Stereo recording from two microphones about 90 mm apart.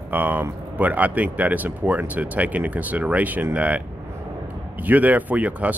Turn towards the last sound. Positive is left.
turn(degrees=-15)  # may be behind; listen again after turning